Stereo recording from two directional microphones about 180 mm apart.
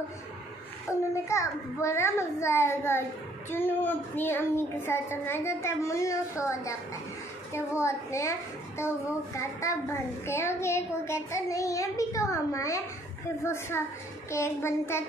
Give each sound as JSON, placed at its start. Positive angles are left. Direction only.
{"t": 1.1, "sound": "a woman's voice", "side_deg": 15}